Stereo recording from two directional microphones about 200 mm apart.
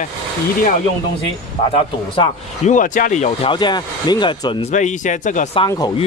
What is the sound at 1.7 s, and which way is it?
Speech, 35° left (ahead or behind).